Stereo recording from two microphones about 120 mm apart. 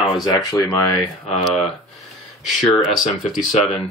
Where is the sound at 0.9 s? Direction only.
Centre (ahead or behind).